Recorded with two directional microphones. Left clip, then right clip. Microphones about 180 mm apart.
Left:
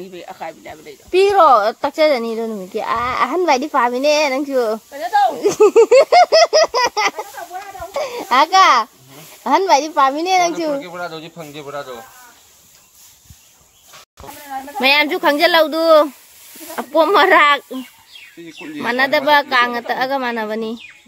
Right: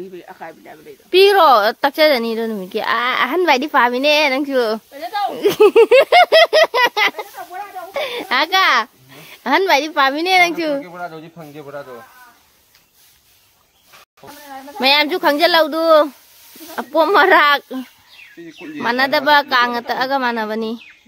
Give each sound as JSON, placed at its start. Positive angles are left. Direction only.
{"t": 0.1, "sound": "speech", "side_deg": 20}
{"t": 1.1, "sound": "a child's voice", "side_deg": -25}
{"t": 4.5, "sound": "speech", "side_deg": -35}
{"t": 5.4, "sound": "a woman's voice", "side_deg": -15}
{"t": 14.8, "sound": "a woman's voice", "side_deg": -10}
{"t": 18.8, "sound": "a woman's voice", "side_deg": -15}